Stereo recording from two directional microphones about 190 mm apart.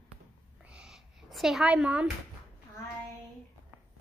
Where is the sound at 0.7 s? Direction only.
5° right (ahead or behind).